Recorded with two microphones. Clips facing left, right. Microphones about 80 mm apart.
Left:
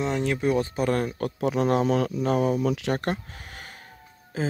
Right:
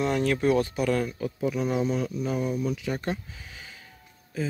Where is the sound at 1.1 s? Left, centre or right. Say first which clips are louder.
Left 3 dB; left.